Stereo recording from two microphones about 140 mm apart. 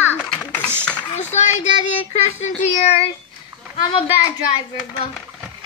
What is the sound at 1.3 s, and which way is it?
Speech, 50° left (ahead or behind).